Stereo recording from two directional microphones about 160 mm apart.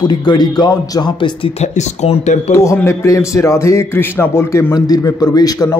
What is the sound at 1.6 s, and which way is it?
Speech, 45° left (ahead or behind).